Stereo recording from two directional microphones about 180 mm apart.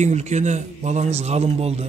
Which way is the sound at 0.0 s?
40° right (ahead or behind).